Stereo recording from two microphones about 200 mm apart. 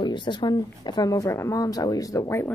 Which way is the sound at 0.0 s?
25° left (ahead or behind).